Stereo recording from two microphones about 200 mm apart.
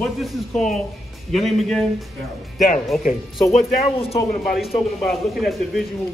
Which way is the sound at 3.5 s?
30° left (ahead or behind).